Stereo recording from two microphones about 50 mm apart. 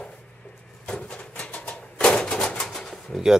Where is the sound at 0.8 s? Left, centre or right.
Left.